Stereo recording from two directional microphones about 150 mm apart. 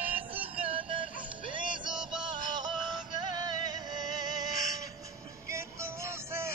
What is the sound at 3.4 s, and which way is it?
Music, 25° right (ahead or behind).